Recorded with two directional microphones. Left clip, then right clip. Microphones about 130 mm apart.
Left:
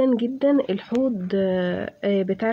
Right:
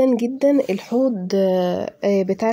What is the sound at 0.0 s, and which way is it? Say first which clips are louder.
Speech: right 3 dB; 25° right (ahead or behind).